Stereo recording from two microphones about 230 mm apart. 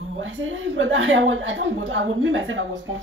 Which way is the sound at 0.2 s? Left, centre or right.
Right.